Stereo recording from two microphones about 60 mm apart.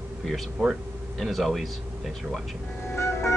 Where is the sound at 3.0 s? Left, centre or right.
Left.